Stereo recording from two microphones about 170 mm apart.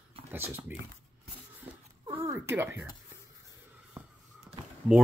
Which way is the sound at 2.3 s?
15° right (ahead or behind).